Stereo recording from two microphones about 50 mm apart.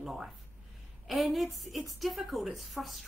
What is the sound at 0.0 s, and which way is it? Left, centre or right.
A woman's voice, centre.